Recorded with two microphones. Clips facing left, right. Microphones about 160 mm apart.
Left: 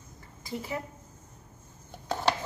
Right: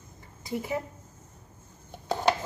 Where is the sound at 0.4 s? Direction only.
20° right (ahead or behind).